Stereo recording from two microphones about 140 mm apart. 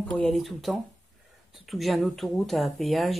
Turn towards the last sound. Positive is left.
turn(degrees=0)  # may be behind; listen again after turning